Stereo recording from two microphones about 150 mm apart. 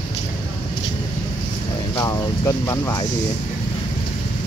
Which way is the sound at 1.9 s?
20° left (ahead or behind).